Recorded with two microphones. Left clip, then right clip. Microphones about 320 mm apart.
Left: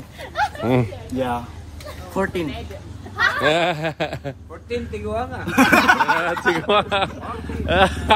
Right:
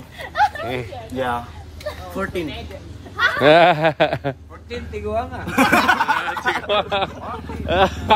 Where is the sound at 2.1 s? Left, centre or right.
Centre.